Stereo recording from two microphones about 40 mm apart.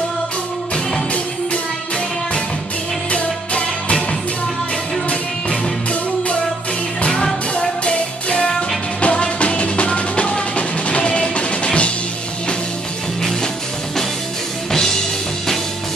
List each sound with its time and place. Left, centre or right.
3.1 s music: left
7.8 s music: left